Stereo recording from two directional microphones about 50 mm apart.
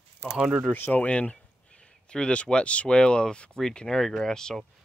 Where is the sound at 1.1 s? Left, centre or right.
Left.